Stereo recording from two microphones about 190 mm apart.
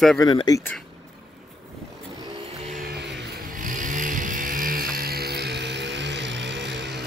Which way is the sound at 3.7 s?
45° right (ahead or behind).